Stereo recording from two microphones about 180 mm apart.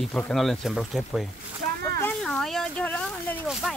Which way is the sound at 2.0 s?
5° left (ahead or behind).